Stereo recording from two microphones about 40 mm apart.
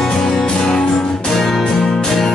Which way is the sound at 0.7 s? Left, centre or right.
Left.